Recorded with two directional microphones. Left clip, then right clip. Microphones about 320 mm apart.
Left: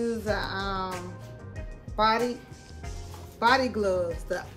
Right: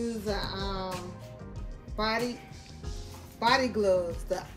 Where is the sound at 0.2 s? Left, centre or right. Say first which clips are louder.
Left 4 dB; centre.